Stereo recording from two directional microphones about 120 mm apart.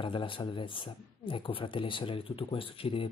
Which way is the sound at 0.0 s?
45° left (ahead or behind).